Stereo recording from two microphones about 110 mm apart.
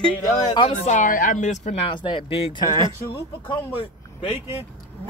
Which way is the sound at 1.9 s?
50° left (ahead or behind).